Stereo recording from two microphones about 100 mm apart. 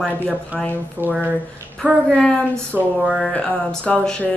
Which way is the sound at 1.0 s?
20° right (ahead or behind).